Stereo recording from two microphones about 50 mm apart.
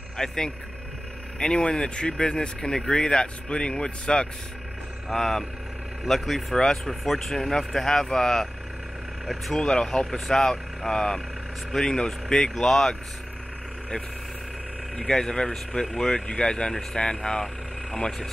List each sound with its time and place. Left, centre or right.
0.2 s speech: centre
1.4 s speech: centre
5.1 s speech: centre
6.5 s speech: centre
9.2 s speech: centre
9.6 s speech: centre
9.8 s speech: centre
15.0 s speech: centre